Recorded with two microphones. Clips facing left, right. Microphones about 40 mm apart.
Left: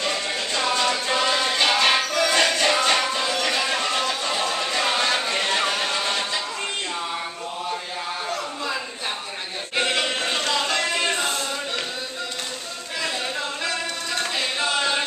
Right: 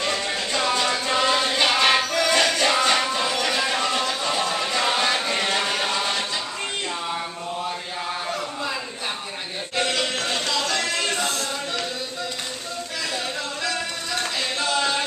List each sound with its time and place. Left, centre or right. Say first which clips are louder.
0.0 s music: right 1 dB; centre
9.8 s music: left 1 dB; centre
14.1 s a sound: even; centre